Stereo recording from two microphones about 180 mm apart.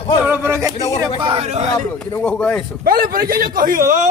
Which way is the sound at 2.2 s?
5° left (ahead or behind).